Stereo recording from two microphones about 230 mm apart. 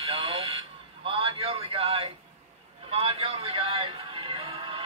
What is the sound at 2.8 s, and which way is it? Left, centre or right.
Music, right.